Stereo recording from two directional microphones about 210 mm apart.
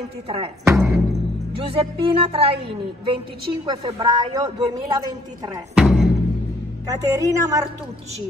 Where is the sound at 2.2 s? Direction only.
25° right (ahead or behind).